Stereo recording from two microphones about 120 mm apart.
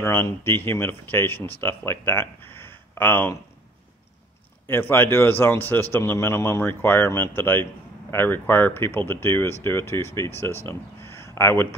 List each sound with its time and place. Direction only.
0.0 s speech: 20° left (ahead or behind)
4.6 s speech: 20° left (ahead or behind)